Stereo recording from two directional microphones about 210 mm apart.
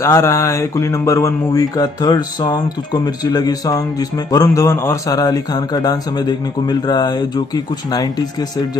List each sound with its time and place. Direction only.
0.0 s speech: 15° left (ahead or behind)